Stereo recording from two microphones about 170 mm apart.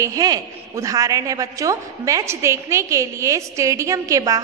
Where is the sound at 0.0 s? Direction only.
20° right (ahead or behind).